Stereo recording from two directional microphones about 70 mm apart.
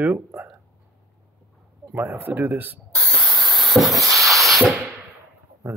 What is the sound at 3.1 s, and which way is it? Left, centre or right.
Spray, centre.